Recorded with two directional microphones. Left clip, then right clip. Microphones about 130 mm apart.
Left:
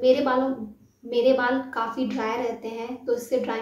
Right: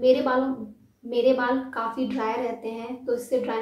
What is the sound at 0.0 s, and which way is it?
A woman's voice, 15° left (ahead or behind).